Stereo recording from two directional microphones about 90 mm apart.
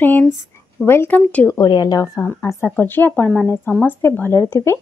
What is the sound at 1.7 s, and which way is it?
Speech, 45° left (ahead or behind).